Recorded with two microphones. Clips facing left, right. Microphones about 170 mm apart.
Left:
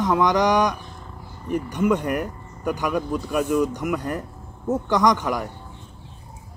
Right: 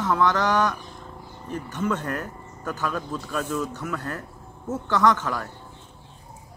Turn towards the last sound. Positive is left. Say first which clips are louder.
# left 2 dB
turn(degrees=15)  # may be behind; listen again after turning